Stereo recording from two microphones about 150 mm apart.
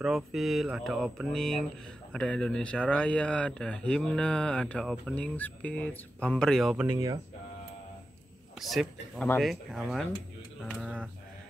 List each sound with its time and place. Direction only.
0.0 s speech: centre (ahead or behind)
6.9 s speech: 25° right (ahead or behind)
8.5 s speech: centre (ahead or behind)